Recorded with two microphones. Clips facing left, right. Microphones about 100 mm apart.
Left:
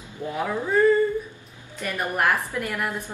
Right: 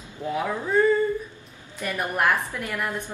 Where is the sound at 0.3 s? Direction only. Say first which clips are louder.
Even; centre (ahead or behind).